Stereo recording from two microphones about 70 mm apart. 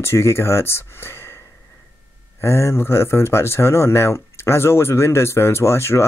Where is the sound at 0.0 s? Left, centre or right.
Left.